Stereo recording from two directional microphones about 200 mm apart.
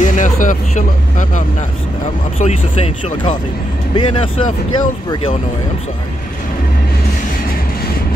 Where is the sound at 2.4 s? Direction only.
30° left (ahead or behind).